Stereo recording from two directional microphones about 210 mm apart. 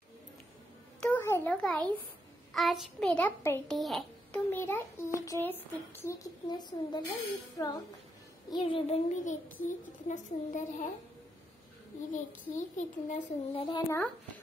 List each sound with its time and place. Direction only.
1.0 s a sound: 10° left (ahead or behind)
2.5 s a child's voice: centre (ahead or behind); by 10.6 s 35° left (ahead or behind)
12.1 s a child's voice: 35° left (ahead or behind); by 14.1 s 10° left (ahead or behind)